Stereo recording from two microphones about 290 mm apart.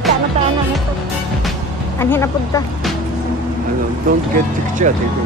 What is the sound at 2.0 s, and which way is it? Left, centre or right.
Speech, centre.